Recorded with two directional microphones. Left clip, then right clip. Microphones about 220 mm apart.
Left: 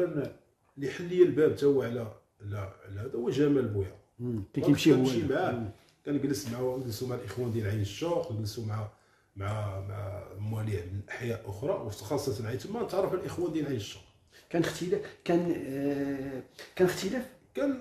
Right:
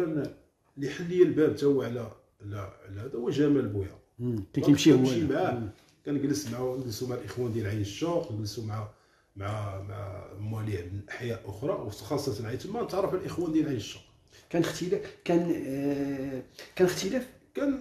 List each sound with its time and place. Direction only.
0.7 s speech: 5° right (ahead or behind)
4.5 s speech: 15° right (ahead or behind)